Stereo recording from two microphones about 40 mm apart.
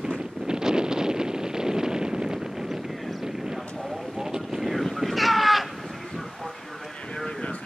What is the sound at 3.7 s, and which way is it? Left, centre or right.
Vehicle, centre.